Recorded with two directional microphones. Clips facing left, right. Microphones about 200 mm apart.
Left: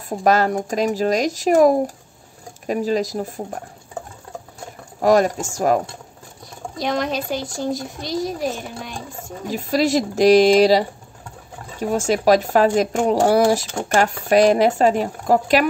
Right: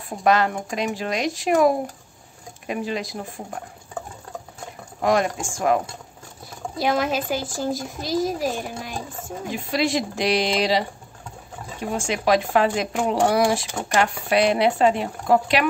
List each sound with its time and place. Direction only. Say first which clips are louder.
0.2 s speech: left 2 dB; 40° left (ahead or behind)
5.0 s speech: left 5 dB; 40° left (ahead or behind)
6.8 s a child's voice: even; 5° right (ahead or behind)
9.5 s speech: left 5 dB; 40° left (ahead or behind)